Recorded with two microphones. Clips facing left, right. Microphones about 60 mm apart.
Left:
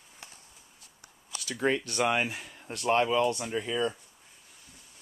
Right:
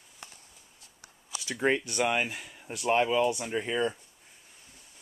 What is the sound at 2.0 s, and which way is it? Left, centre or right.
Speech, centre.